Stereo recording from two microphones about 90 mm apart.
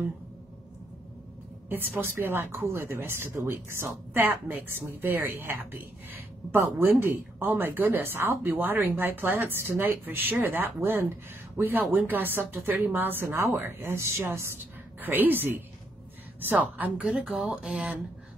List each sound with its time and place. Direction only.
1.7 s a woman's voice: 25° right (ahead or behind)